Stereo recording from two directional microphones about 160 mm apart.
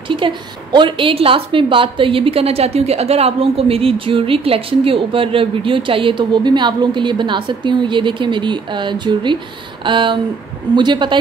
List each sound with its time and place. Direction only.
0.1 s a woman's voice: 30° right (ahead or behind)